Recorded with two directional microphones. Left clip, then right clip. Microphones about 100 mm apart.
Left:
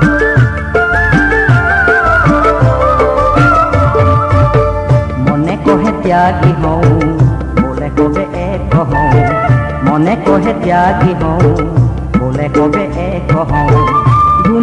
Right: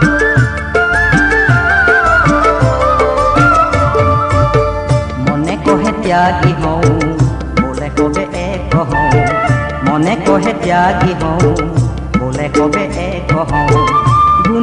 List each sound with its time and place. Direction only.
0.0 s music: 40° right (ahead or behind)